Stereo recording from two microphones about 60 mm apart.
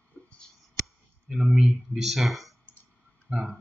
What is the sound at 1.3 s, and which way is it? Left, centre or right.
Speech, centre.